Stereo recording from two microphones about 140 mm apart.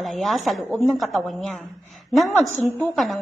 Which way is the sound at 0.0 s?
Centre (ahead or behind).